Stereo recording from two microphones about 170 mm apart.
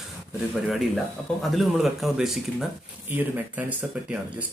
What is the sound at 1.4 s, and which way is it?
Speech, centre (ahead or behind).